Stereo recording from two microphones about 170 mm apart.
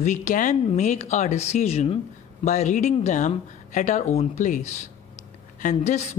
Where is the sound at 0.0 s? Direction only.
45° left (ahead or behind).